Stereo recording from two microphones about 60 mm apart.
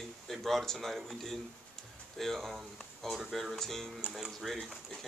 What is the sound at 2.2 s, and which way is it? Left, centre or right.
Speech, centre.